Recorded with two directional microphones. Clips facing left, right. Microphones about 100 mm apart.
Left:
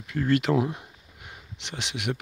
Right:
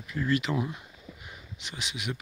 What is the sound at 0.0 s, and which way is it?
Speech, 65° left (ahead or behind).